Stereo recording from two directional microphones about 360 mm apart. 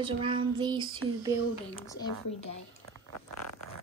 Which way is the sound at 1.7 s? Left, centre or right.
Centre.